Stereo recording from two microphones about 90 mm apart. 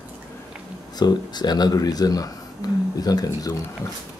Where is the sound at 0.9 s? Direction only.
50° left (ahead or behind).